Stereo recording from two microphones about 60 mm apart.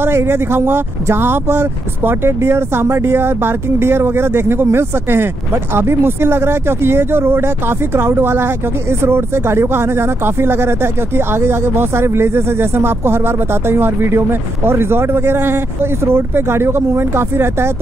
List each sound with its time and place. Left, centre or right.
0.0 s speech: right